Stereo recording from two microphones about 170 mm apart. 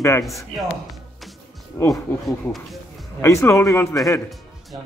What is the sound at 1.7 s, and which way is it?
Speech, 20° left (ahead or behind).